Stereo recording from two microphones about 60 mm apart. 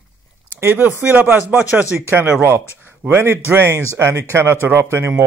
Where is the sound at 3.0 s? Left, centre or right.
Right.